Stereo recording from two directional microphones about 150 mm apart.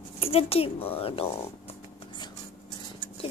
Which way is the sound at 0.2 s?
40° left (ahead or behind).